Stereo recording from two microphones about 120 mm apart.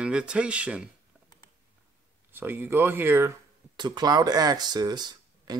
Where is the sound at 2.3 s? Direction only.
15° right (ahead or behind).